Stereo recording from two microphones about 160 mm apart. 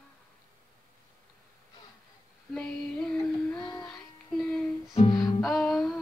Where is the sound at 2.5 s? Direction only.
5° left (ahead or behind).